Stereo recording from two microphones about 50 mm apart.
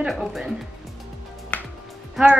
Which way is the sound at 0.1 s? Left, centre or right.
Centre.